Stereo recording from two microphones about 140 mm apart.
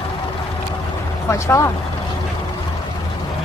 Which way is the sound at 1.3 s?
20° left (ahead or behind).